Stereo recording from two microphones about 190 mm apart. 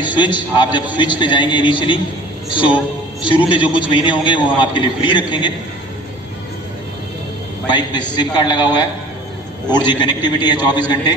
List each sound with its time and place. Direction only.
0.0 s a man's voice: 25° left (ahead or behind)
7.6 s a man's voice: 25° left (ahead or behind)
9.7 s a man's voice: 20° left (ahead or behind)